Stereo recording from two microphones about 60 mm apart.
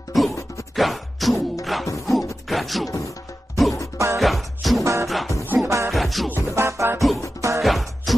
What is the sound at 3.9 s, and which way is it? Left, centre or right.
Music, right.